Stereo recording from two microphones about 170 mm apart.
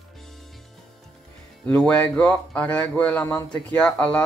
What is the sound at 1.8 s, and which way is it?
A man's voice, 5° left (ahead or behind).